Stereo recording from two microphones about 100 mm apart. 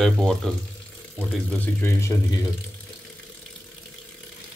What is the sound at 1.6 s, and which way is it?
Speech, 25° left (ahead or behind).